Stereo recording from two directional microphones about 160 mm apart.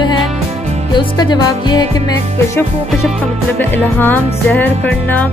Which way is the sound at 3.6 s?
10° left (ahead or behind).